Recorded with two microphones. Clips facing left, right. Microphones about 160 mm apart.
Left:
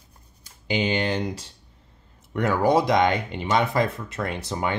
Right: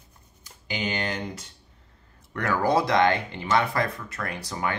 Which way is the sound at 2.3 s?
20° left (ahead or behind).